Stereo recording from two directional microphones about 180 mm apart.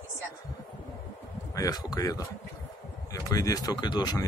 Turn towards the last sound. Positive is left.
turn(degrees=25)  # may be behind; listen again after turning